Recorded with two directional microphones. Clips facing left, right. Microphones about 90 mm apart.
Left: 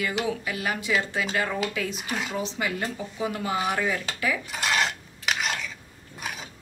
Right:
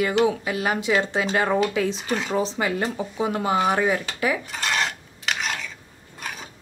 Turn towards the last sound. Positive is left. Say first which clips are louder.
# right 1 dB
turn(degrees=5)  # may be behind; listen again after turning